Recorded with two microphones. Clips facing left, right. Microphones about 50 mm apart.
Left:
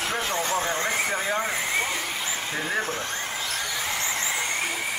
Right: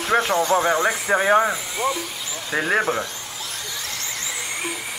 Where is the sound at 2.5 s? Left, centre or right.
Right.